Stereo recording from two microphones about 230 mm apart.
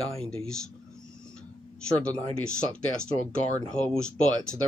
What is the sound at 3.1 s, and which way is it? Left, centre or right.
Speech, centre.